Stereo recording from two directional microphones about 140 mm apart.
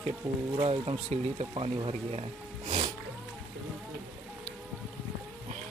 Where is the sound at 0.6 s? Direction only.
45° right (ahead or behind).